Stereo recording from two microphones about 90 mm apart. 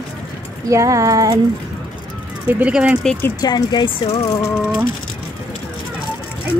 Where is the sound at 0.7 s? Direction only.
35° right (ahead or behind).